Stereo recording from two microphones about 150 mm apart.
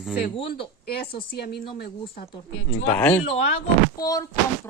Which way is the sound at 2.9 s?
10° left (ahead or behind).